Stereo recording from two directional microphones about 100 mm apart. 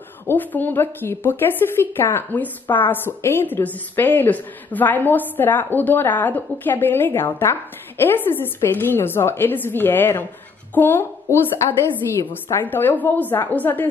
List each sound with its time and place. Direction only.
0.3 s a woman's voice: 20° left (ahead or behind)